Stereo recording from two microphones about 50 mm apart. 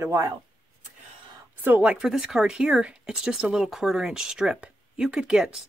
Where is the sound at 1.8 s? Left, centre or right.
Right.